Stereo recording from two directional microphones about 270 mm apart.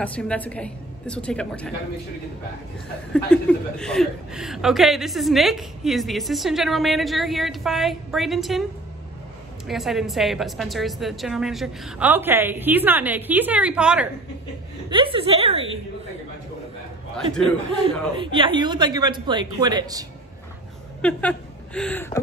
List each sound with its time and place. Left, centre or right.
0.0 s a woman's voice: centre
3.3 s a woman's voice: centre
9.7 s a woman's voice: centre
14.9 s a woman's voice: centre
17.8 s a woman's voice: centre
21.0 s speech: centre